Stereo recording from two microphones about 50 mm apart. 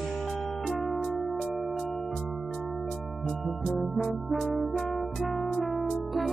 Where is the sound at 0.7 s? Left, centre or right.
Centre.